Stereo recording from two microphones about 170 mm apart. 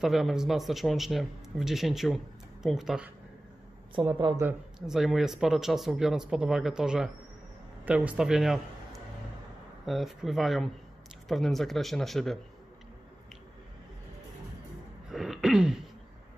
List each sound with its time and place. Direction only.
0.0 s a man's voice: centre (ahead or behind)
3.9 s speech: 30° right (ahead or behind)
4.4 s a man's voice: 5° right (ahead or behind)
15.0 s throat clearing: centre (ahead or behind)